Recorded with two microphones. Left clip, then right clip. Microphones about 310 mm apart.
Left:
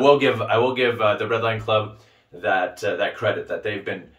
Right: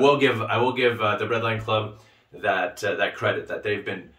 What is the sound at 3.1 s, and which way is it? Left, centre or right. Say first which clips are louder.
Speech: left 2 dB; centre.